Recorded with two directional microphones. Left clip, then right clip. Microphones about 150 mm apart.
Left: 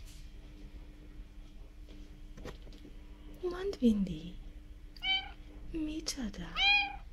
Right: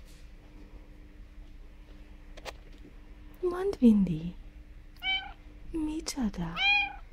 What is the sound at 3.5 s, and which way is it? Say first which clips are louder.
Speech: right 6 dB; 65° right (ahead or behind).